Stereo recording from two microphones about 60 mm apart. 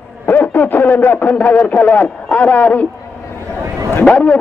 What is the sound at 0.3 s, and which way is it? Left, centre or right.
Speech, left.